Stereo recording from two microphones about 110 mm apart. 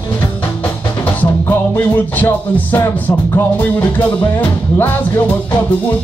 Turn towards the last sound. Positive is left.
turn(degrees=20)  # may be behind; listen again after turning